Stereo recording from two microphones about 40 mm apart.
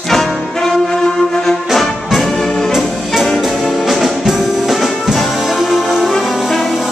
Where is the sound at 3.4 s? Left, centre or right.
Centre.